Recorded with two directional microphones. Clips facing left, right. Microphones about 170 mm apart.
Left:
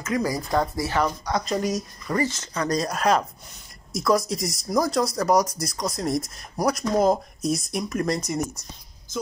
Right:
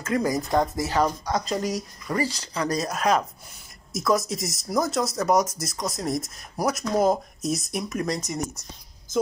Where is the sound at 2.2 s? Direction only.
35° right (ahead or behind).